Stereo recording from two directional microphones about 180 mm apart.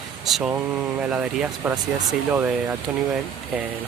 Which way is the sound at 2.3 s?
15° right (ahead or behind).